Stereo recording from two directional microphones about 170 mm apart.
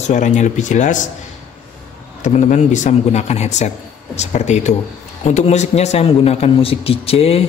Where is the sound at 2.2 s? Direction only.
45° left (ahead or behind).